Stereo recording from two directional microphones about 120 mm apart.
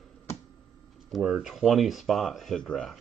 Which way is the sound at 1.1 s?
5° right (ahead or behind).